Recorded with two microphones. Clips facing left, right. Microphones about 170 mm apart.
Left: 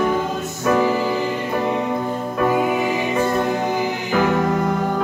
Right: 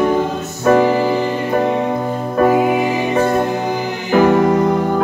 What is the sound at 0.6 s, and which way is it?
Music, 40° right (ahead or behind).